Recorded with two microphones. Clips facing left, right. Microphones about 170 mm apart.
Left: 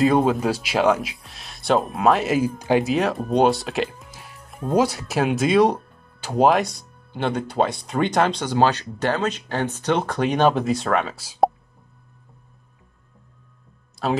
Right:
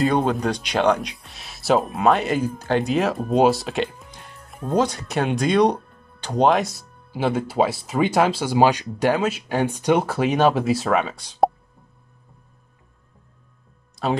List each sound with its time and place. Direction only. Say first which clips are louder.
0.0 s speech: left 2 dB; centre (ahead or behind)
14.0 s speech: even; centre (ahead or behind)